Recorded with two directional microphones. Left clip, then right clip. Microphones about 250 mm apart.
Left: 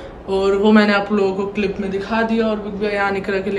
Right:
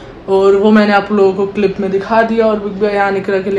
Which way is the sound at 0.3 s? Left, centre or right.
Centre.